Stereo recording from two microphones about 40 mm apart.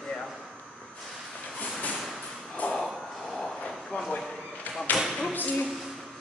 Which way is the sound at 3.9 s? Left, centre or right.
Left.